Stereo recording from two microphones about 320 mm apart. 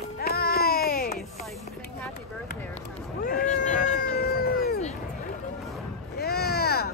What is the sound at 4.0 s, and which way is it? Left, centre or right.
Cat, left.